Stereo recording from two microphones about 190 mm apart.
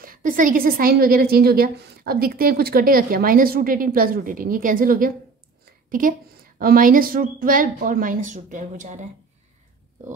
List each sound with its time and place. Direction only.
0.0 s a woman's voice: 50° right (ahead or behind)